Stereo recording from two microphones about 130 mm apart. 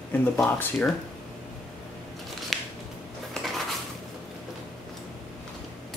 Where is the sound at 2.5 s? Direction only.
Centre (ahead or behind).